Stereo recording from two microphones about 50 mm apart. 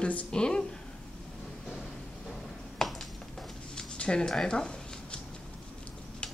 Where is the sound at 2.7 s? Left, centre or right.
Centre.